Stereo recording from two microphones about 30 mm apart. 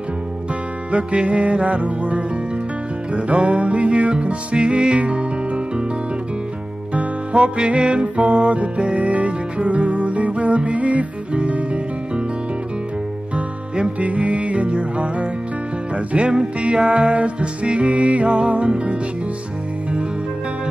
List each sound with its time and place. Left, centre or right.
0.9 s music: right
4.9 s music: right
6.9 s music: right
13.9 s music: right
14.7 s music: right
16.2 s music: right